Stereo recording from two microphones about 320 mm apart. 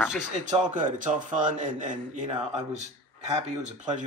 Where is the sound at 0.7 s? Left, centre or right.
Right.